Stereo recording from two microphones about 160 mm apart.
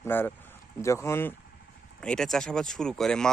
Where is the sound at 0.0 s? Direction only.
15° left (ahead or behind).